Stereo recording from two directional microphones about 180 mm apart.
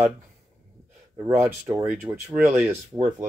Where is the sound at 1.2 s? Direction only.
15° right (ahead or behind).